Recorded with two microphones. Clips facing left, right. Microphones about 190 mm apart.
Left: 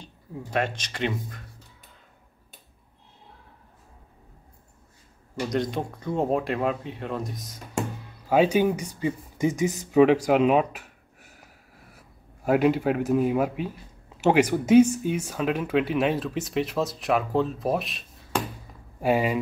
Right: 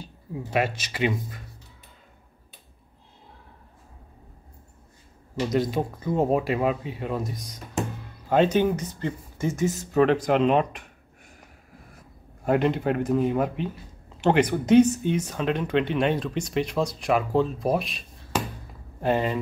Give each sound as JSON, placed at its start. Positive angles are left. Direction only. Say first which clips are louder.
{"t": 0.0, "sound": "speech", "louder": "right 3 dB", "side_deg": -5}
{"t": 5.4, "sound": "speech", "louder": "right 3 dB", "side_deg": -5}
{"t": 12.4, "sound": "speech", "louder": "left 1 dB", "side_deg": 5}